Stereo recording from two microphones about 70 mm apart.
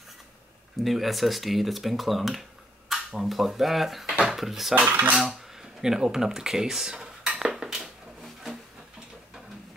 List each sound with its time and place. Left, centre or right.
0.8 s speech: centre
4.7 s cutlery: right
5.1 s a sound: centre